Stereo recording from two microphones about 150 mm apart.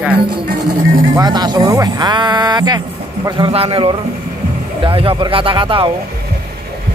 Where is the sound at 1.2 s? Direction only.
25° right (ahead or behind).